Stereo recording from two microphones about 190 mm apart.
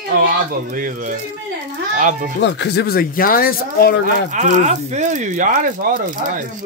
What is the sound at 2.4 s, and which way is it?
Speech, 65° left (ahead or behind).